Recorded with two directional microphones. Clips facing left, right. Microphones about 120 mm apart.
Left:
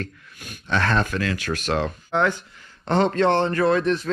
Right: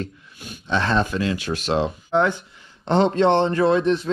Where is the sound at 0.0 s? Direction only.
20° right (ahead or behind).